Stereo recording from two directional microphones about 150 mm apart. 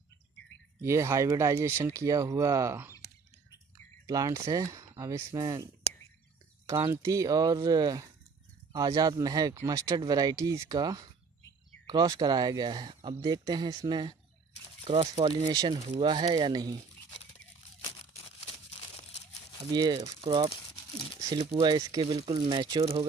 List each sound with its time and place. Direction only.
0.8 s speech: 20° right (ahead or behind)
4.1 s speech: 25° right (ahead or behind)
6.9 s speech: 20° right (ahead or behind)
14.9 s speech: 40° right (ahead or behind)
15.2 s speech: 25° right (ahead or behind)
19.7 s speech: 30° right (ahead or behind)